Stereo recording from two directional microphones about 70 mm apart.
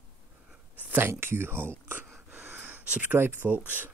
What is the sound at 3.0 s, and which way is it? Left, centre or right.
Speech, right.